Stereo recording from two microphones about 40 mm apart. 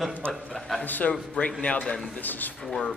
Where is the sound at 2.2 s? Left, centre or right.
Left.